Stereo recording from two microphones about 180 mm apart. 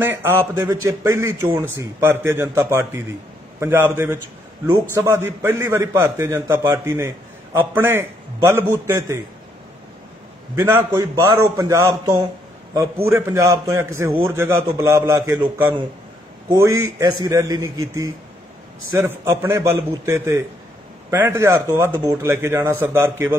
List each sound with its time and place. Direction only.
0.0 s a man's voice: 15° right (ahead or behind)
10.5 s a man's voice: 15° right (ahead or behind)
17.0 s a man's voice: 20° right (ahead or behind)